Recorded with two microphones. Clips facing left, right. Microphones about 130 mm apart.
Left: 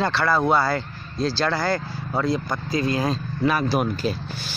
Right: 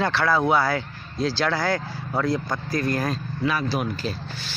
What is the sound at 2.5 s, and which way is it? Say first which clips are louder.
Speech: left 1 dB; 15° left (ahead or behind).